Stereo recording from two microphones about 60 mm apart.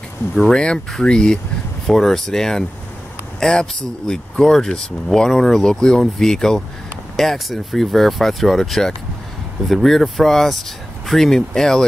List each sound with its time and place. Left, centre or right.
0.5 s a man's voice: centre